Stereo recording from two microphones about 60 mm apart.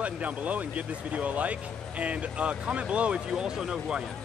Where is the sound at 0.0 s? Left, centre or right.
Right.